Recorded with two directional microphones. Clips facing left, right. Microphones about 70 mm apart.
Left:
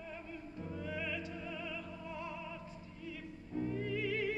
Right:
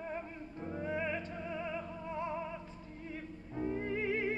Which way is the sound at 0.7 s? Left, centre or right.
Right.